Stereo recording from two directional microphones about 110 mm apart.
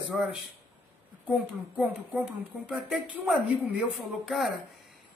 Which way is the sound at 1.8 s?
10° right (ahead or behind).